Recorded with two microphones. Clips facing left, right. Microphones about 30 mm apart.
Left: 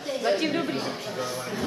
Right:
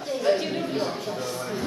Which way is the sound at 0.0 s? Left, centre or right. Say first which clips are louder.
Right 2 dB; centre.